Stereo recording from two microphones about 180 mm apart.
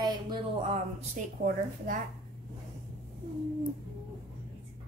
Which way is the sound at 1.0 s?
45° right (ahead or behind).